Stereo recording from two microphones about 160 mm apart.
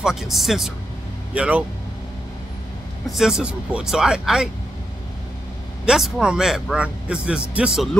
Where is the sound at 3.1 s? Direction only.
5° right (ahead or behind).